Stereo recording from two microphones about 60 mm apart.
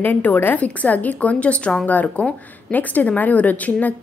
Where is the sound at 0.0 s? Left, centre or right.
Left.